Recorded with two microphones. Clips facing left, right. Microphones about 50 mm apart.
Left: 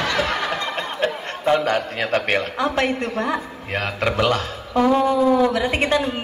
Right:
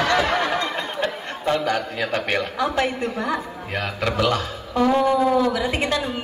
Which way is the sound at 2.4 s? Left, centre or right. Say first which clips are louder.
Left 1 dB; centre.